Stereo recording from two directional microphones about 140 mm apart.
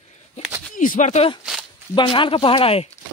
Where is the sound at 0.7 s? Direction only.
65° left (ahead or behind).